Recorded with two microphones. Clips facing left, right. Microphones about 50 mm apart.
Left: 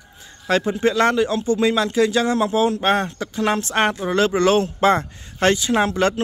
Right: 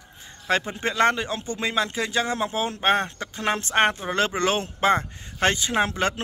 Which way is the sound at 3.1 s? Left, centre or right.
Right.